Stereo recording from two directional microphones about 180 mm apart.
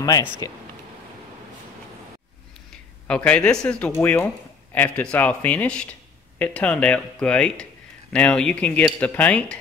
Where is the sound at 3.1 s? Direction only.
5° left (ahead or behind).